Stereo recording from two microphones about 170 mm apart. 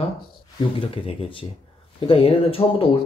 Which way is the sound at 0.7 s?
35° left (ahead or behind).